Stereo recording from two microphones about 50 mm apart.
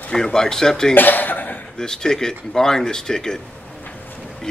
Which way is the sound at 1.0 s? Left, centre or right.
Left.